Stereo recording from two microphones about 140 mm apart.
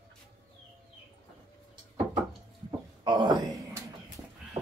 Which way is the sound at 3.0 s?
35° right (ahead or behind).